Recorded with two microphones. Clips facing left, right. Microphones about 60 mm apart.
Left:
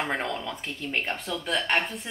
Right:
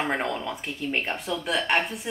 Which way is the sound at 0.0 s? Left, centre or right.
Centre.